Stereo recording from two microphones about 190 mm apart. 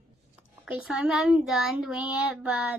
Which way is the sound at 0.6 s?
5° right (ahead or behind).